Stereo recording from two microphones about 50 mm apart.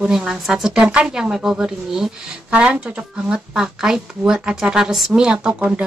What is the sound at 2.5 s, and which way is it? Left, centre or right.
A woman's voice, right.